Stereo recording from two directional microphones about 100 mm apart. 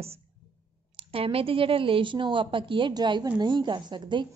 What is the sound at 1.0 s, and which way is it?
A woman's voice, 70° right (ahead or behind).